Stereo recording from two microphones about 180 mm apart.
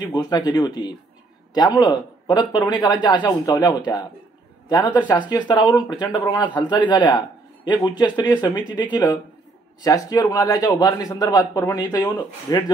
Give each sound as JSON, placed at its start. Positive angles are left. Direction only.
{"t": 0.1, "sound": "speech", "side_deg": 20}